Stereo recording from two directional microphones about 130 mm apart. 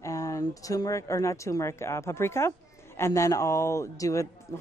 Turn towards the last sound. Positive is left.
turn(degrees=25)  # may be behind; listen again after turning